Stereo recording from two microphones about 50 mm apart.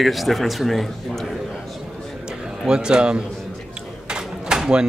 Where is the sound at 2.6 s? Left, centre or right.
Centre.